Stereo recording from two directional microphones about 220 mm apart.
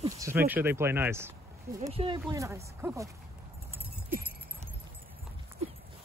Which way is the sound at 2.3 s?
15° right (ahead or behind).